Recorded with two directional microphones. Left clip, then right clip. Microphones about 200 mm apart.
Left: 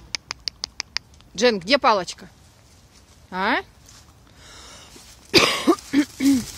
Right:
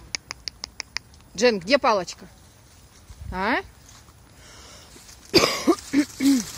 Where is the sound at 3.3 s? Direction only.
Centre (ahead or behind).